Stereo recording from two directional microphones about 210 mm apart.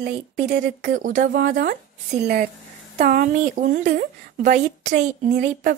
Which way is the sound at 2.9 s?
35° right (ahead or behind).